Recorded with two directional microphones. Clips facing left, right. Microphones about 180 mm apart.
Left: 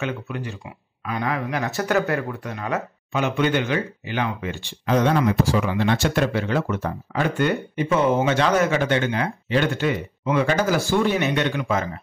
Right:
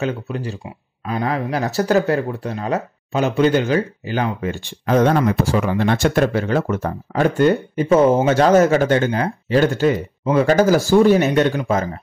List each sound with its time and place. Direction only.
0.0 s speech: 35° right (ahead or behind)